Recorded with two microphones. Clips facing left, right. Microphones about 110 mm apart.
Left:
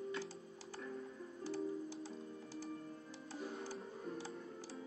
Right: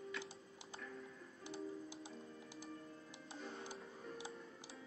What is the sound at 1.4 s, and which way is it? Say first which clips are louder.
Music: left 6 dB; 20° right (ahead or behind).